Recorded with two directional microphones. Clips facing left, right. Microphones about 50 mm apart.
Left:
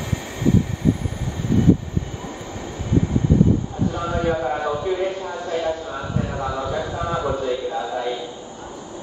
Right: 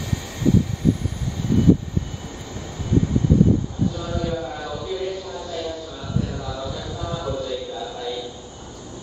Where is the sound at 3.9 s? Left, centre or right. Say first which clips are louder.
Left 8 dB; left.